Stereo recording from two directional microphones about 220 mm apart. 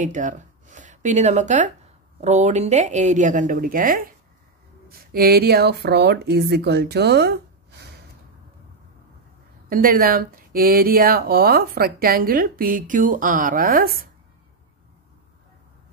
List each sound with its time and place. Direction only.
0.0 s speech: 35° right (ahead or behind)
9.7 s speech: 40° right (ahead or behind)